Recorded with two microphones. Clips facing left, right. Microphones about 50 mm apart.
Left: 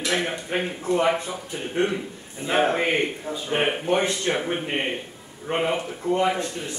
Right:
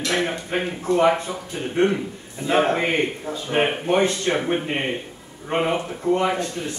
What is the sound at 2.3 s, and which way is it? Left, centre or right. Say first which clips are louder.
Speech: right 3 dB; left.